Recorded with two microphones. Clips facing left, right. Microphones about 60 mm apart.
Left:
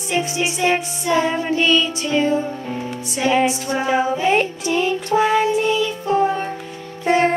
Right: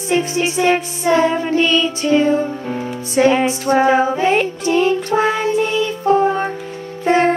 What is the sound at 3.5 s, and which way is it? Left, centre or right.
Music, right.